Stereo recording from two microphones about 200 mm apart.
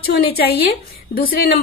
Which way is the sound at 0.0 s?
50° left (ahead or behind).